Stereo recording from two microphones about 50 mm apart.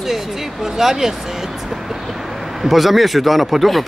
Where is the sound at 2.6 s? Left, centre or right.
Centre.